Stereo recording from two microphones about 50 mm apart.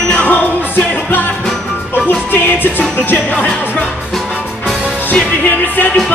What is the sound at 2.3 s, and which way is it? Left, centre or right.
Music, left.